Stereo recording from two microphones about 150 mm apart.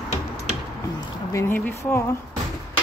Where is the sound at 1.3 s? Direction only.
20° left (ahead or behind).